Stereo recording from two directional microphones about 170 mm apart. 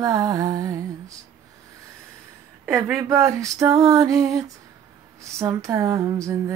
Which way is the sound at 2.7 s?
10° right (ahead or behind).